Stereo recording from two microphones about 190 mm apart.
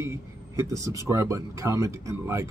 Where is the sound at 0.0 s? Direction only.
15° right (ahead or behind).